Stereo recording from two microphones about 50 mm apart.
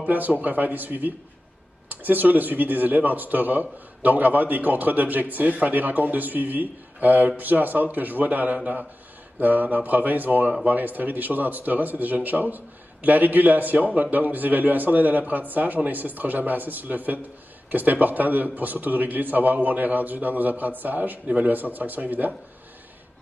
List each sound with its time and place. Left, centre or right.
0.4 s speech: right